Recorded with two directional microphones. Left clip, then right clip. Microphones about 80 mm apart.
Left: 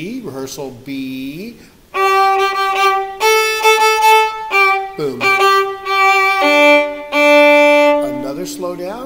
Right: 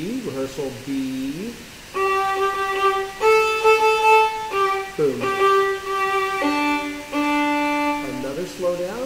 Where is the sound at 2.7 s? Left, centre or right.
Left.